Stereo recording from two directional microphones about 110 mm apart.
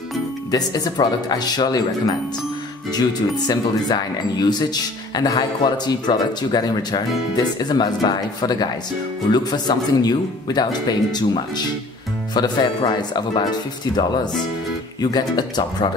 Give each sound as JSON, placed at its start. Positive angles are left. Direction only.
{"t": 0.5, "sound": "speech", "side_deg": 35}
{"t": 2.9, "sound": "speech", "side_deg": 40}